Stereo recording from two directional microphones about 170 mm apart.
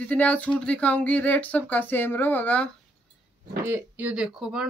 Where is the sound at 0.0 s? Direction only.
10° left (ahead or behind).